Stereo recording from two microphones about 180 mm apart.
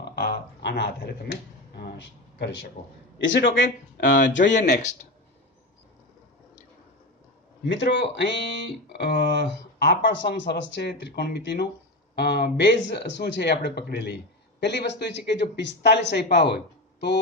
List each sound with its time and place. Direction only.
0.0 s a sound: 65° left (ahead or behind)
3.2 s a man's voice: 90° left
7.7 s speech: 75° left (ahead or behind)